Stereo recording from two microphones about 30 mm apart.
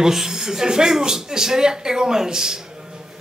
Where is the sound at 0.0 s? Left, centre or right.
Centre.